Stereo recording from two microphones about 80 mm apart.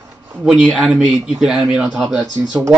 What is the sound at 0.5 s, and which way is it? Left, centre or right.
Speech, centre.